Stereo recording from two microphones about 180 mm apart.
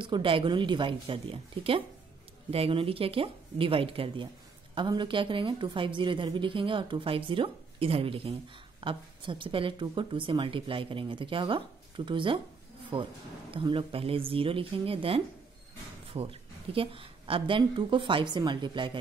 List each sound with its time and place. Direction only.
0.0 s a woman's voice: 30° right (ahead or behind)